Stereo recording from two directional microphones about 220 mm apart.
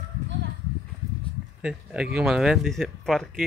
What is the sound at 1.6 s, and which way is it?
Speech, 5° right (ahead or behind).